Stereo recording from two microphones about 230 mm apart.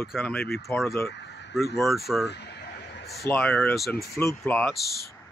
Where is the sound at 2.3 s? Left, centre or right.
Left.